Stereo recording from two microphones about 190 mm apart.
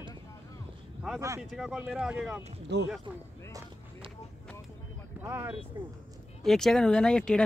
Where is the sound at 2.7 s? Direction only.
65° right (ahead or behind).